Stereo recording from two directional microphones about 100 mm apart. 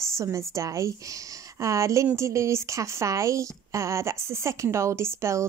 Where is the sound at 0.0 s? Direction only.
30° right (ahead or behind).